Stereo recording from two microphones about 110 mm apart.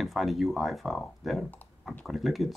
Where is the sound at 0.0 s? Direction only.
Centre (ahead or behind).